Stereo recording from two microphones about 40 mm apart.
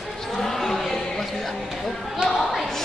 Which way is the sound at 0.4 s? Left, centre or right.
Centre.